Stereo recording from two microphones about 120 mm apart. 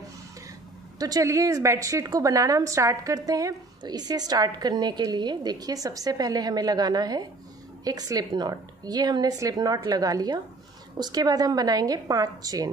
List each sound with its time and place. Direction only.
0.9 s a woman's voice: 30° right (ahead or behind)